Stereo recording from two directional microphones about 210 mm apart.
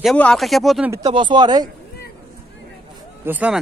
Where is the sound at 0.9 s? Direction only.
20° right (ahead or behind).